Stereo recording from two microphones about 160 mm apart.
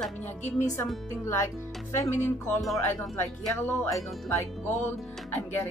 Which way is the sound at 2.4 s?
Centre (ahead or behind).